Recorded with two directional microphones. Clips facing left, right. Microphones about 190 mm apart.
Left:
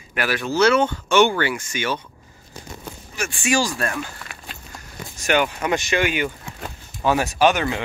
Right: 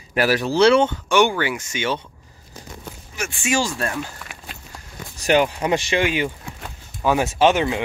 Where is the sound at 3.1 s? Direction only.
20° right (ahead or behind).